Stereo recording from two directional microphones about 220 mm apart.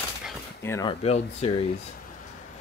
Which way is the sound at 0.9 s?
30° left (ahead or behind).